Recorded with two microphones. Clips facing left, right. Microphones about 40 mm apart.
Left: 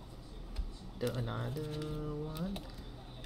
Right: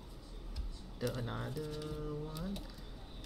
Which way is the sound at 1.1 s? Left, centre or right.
Centre.